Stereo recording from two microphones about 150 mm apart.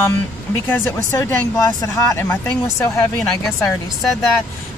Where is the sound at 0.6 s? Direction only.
15° left (ahead or behind).